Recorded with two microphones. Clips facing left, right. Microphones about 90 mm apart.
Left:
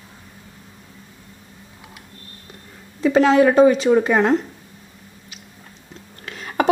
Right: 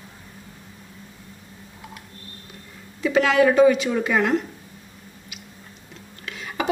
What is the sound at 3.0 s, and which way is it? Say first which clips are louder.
Speech: left 4 dB; 35° left (ahead or behind).